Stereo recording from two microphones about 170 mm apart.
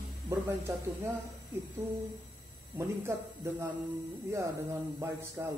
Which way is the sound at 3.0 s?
15° right (ahead or behind).